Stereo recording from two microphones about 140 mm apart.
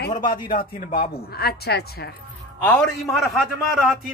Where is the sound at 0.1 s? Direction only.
70° left (ahead or behind).